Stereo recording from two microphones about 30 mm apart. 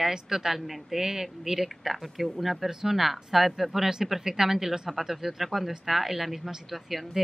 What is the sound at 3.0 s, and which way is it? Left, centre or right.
Speech, centre.